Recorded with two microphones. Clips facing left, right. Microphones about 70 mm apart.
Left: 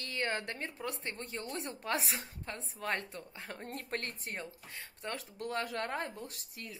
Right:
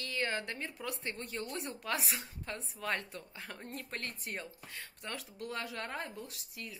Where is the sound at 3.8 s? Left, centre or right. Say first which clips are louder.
Left 3 dB; left.